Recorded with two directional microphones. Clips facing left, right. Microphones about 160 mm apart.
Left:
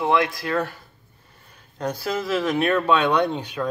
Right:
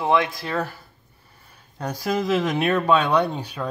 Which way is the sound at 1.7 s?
10° right (ahead or behind).